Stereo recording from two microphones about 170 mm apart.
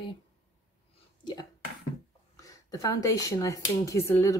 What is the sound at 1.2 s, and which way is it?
Speech, 25° left (ahead or behind).